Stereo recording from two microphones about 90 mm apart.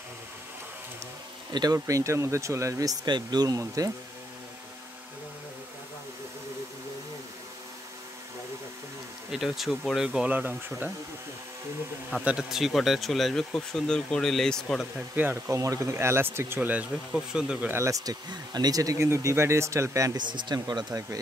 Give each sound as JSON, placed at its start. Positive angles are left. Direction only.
{"t": 1.5, "sound": "speech", "side_deg": -45}
{"t": 3.1, "sound": "speech", "side_deg": -55}
{"t": 9.3, "sound": "speech", "side_deg": 0}
{"t": 10.3, "sound": "speech", "side_deg": -20}
{"t": 12.1, "sound": "speech", "side_deg": -10}
{"t": 15.1, "sound": "speech", "side_deg": -25}
{"t": 17.6, "sound": "speech", "side_deg": -30}
{"t": 20.2, "sound": "speech", "side_deg": -55}